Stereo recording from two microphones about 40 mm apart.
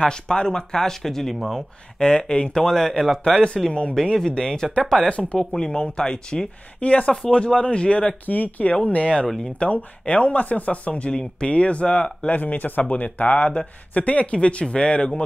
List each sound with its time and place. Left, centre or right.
0.0 s speech: centre
2.2 s speech: left; by 3.4 s centre
3.5 s speech: centre
6.8 s speech: left
8.3 s speech: left
12.3 s speech: left